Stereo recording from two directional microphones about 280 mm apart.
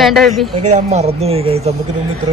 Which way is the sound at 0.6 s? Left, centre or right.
Right.